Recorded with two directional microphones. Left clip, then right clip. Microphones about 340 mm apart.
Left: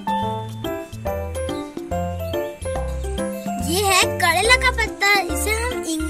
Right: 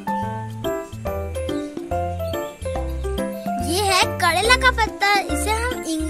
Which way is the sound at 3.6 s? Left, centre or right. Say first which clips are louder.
Left 1 dB; centre.